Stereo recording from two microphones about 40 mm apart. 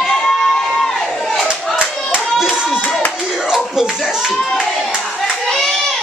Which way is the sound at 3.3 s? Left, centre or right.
Centre.